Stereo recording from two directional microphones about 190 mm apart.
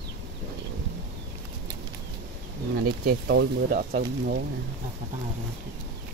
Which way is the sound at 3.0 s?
60° right (ahead or behind).